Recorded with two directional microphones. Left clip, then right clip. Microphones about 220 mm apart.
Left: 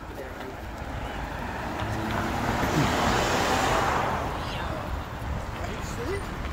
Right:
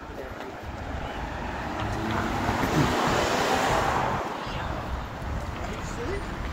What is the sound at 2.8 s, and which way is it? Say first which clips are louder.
Vehicle: even; 45° left (ahead or behind).